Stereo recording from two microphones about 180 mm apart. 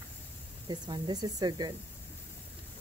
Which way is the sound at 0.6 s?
25° right (ahead or behind).